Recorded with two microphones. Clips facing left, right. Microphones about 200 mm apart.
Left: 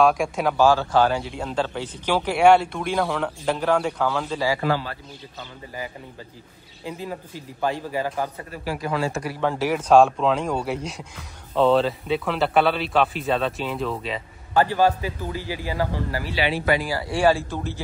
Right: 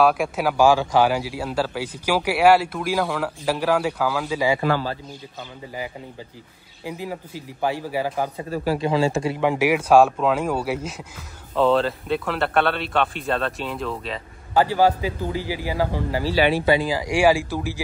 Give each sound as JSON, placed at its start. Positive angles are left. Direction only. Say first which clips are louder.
{"t": 0.0, "sound": "a man's voice", "louder": "even", "side_deg": -5}
{"t": 6.8, "sound": "a man's voice", "louder": "right 1 dB", "side_deg": -10}
{"t": 8.7, "sound": "a man's voice", "louder": "right 4 dB", "side_deg": -25}
{"t": 9.4, "sound": "a man's voice", "louder": "right 2 dB", "side_deg": -15}
{"t": 14.5, "sound": "a man's voice", "louder": "right 1 dB", "side_deg": -15}
{"t": 16.6, "sound": "a man's voice", "louder": "right 3 dB", "side_deg": -25}
{"t": 16.9, "sound": "a man's voice", "louder": "right 2 dB", "side_deg": -15}